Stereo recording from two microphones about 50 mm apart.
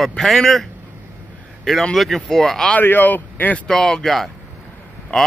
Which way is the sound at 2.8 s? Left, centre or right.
Left.